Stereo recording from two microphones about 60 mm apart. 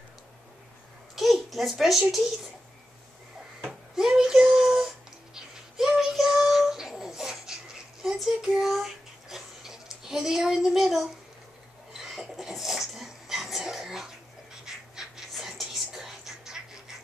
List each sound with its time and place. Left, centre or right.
1.1 s babbling: centre
3.6 s a sound: centre
14.7 s whispering: centre